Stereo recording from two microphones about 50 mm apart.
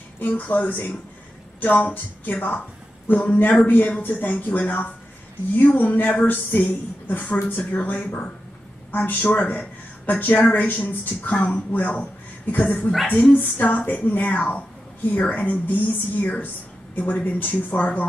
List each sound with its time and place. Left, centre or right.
0.2 s a woman's voice: left